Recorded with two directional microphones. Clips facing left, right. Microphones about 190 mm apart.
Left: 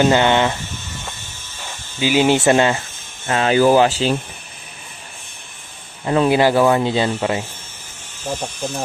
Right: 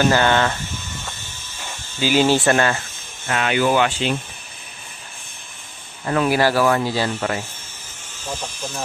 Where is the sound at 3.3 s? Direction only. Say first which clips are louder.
Left 5 dB; 30° left (ahead or behind).